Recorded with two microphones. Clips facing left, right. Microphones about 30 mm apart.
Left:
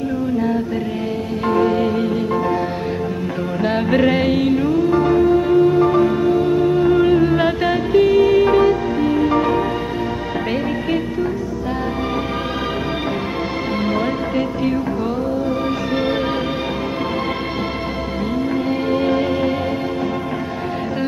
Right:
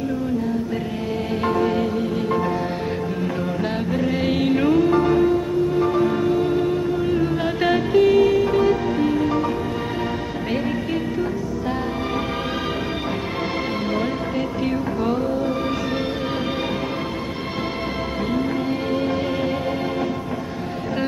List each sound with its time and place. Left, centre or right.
1.5 s music: centre
4.3 s music: centre
4.6 s music: centre
5.0 s music: centre
6.8 s music: left
7.2 s humming: left
7.6 s music: centre
8.4 s music: left
8.6 s music: centre
9.1 s music: centre
13.9 s music: centre
18.7 s music: centre